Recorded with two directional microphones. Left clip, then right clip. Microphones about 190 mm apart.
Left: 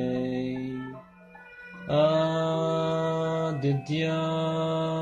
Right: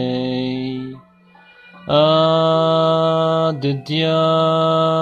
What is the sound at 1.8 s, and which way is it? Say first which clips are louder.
Mantra: right 10 dB; 30° right (ahead or behind).